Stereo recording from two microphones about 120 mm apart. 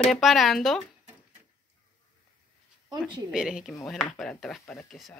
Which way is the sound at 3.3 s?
5° right (ahead or behind).